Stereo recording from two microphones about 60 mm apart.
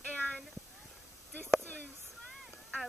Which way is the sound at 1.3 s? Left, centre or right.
Left.